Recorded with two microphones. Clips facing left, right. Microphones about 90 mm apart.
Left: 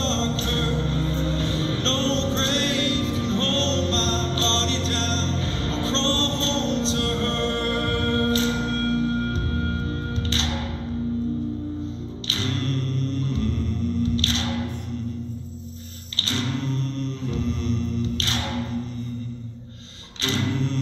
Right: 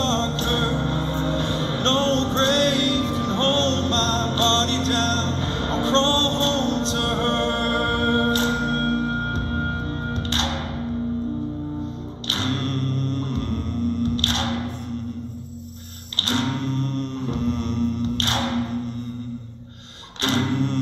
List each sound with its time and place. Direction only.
0.0 s music: 50° right (ahead or behind)
12.3 s music: 50° right (ahead or behind)
14.0 s a sound: 50° right (ahead or behind)
16.3 s music: 50° right (ahead or behind)
20.2 s music: 50° right (ahead or behind)